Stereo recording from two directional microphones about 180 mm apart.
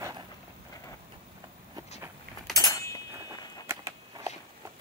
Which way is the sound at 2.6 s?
20° left (ahead or behind).